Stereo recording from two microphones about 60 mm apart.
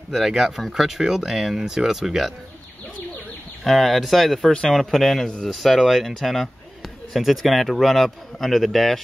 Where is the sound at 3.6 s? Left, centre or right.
Centre.